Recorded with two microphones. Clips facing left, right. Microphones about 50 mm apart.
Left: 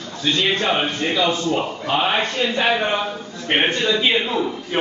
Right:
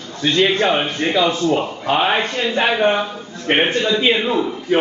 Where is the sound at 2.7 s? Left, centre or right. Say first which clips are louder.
Right 3 dB; centre.